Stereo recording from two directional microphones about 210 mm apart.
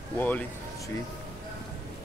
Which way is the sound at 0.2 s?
10° left (ahead or behind).